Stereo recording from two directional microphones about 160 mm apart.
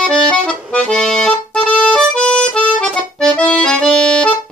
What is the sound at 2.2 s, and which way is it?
Accordion, 5° left (ahead or behind).